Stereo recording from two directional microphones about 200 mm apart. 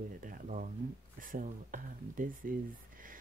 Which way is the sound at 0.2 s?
45° right (ahead or behind).